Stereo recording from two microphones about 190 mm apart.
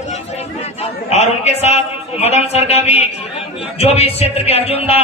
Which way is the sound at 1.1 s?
35° left (ahead or behind).